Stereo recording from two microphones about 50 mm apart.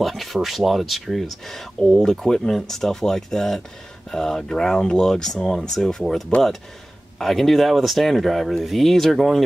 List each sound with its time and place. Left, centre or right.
0.0 s speech: centre
7.2 s speech: centre